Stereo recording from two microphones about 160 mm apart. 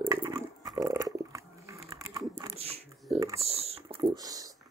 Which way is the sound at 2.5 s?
40° right (ahead or behind).